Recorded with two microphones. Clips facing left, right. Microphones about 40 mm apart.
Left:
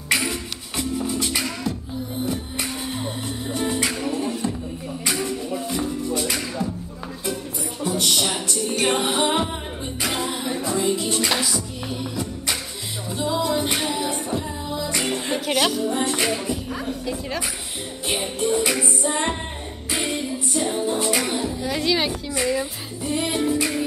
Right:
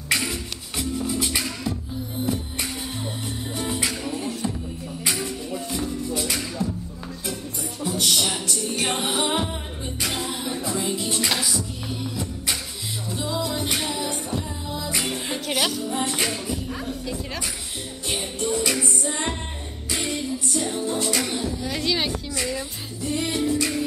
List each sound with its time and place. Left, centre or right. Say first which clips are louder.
0.1 s music: left 2 dB; centre
7.8 s music: left 1 dB; centre
21.6 s music: left 4 dB; centre